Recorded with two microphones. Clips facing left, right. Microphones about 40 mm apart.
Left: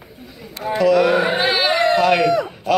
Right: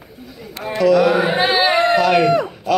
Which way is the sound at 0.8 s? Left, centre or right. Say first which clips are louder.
Right 1 dB; left.